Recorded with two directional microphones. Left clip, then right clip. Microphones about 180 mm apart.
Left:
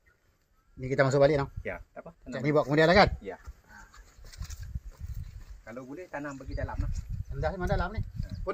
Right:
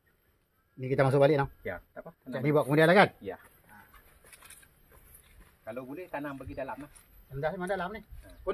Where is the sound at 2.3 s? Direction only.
20° right (ahead or behind).